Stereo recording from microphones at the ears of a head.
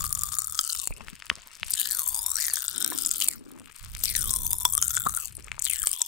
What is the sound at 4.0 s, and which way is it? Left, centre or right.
Chewing, left.